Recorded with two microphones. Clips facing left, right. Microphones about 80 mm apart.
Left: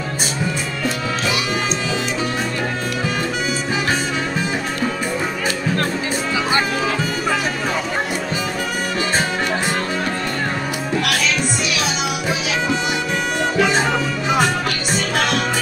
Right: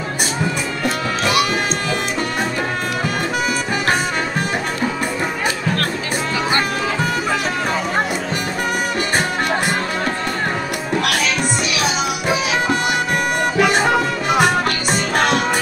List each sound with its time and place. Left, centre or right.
0.8 s music: right
13.4 s bagpipes: right
14.4 s music: right